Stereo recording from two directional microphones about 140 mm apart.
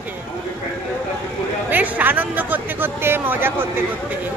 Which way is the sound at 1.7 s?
15° right (ahead or behind).